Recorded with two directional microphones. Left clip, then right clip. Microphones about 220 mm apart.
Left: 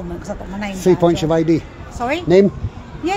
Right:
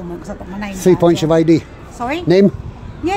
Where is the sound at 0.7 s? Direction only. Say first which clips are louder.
Right 2 dB; 20° right (ahead or behind).